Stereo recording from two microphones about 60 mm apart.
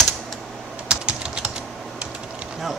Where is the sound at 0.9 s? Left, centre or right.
Centre.